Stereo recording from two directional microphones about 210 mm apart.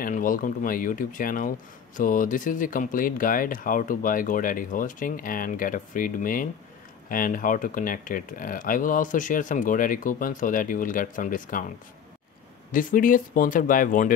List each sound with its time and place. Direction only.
0.0 s speech: 40° left (ahead or behind)
12.7 s speech: 40° left (ahead or behind)